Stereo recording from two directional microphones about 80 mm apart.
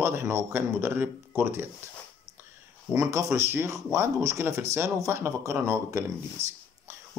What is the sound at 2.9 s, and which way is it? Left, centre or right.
Speech, right.